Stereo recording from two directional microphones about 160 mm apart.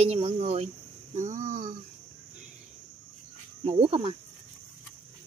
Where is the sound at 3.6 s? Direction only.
35° right (ahead or behind).